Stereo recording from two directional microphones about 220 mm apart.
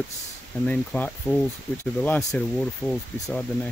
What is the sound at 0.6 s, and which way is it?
Speech, 5° left (ahead or behind).